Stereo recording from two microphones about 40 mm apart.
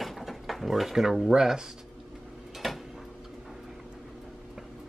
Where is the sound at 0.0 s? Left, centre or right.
Centre.